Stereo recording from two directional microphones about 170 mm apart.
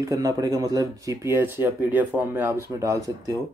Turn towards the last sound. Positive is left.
turn(degrees=-20)  # may be behind; listen again after turning